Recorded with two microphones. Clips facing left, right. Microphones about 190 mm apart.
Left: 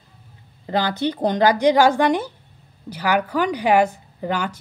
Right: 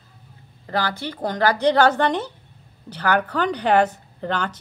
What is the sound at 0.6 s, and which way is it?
A woman's voice, 20° left (ahead or behind).